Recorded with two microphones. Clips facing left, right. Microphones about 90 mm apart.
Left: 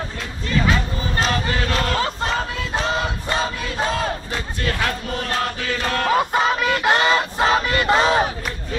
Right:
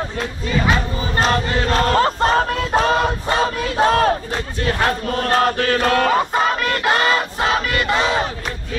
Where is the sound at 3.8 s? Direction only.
55° right (ahead or behind).